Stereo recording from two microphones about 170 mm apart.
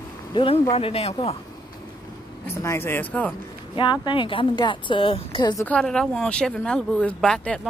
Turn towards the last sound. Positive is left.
turn(degrees=5)  # may be behind; listen again after turning